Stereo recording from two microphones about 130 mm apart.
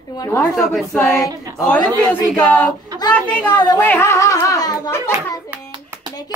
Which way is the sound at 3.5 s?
35° left (ahead or behind).